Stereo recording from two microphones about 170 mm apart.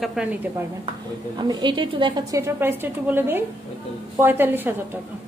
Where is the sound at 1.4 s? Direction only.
25° right (ahead or behind).